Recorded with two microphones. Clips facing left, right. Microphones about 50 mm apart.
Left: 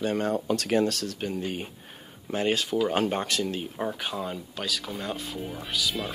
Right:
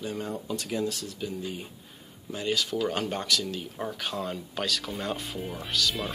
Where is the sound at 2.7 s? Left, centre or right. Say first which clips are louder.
Left 4 dB; left.